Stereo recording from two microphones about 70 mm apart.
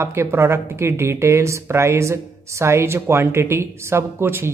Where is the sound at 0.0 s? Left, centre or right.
Right.